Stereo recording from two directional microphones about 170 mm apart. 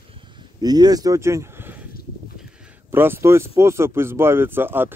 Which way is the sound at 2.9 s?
15° right (ahead or behind).